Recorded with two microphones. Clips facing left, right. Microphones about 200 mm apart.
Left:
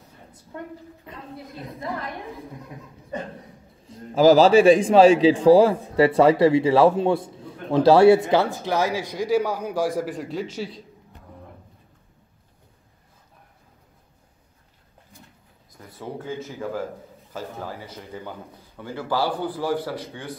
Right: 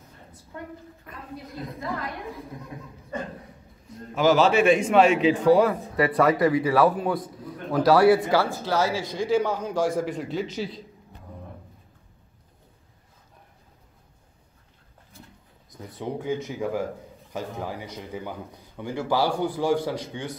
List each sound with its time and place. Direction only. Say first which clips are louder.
1.0 s a man's voice: left 3 dB; 25° left (ahead or behind)
3.8 s a man's voice: left 6 dB; 35° left (ahead or behind); by 10.7 s 5° left (ahead or behind)
15.9 s a man's voice: right 4 dB; 15° right (ahead or behind)